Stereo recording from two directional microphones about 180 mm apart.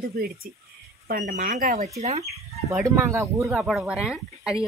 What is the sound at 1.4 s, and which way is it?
Speech, 45° right (ahead or behind).